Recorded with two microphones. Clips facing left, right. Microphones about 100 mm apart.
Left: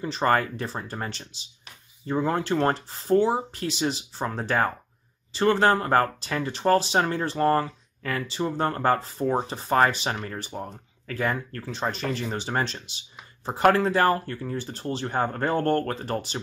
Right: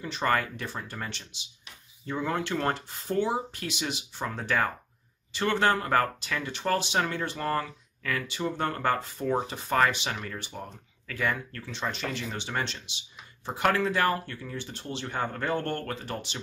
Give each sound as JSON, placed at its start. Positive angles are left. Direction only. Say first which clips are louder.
{"t": 0.0, "sound": "speech", "louder": "left 4 dB", "side_deg": 35}